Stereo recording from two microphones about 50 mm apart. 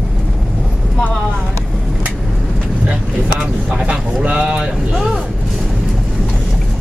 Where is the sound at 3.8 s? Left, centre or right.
Right.